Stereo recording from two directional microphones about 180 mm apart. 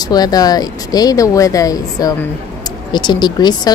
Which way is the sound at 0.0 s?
20° left (ahead or behind).